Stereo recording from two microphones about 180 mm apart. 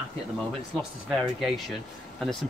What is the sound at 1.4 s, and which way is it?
Speech, centre (ahead or behind).